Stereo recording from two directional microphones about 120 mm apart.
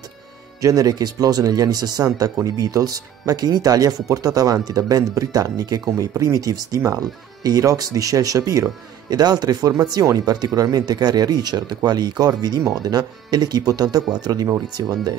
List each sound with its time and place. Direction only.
0.6 s speech: 30° right (ahead or behind)